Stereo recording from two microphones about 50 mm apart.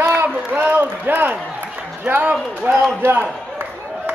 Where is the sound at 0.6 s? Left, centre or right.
Right.